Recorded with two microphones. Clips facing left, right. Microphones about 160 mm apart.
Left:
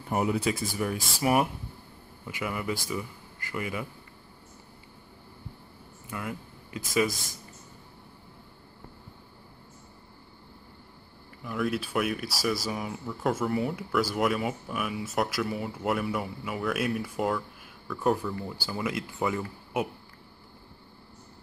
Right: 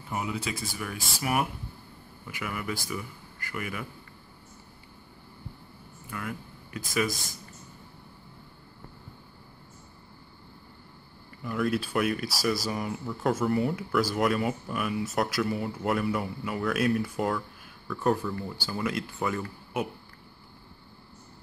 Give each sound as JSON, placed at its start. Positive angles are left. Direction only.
{"t": 0.1, "sound": "a man's voice", "side_deg": 45}
{"t": 6.0, "sound": "speech", "side_deg": 20}
{"t": 11.4, "sound": "speech", "side_deg": 5}